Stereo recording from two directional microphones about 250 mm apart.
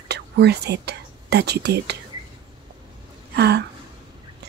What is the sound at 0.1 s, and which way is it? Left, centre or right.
Speech, right.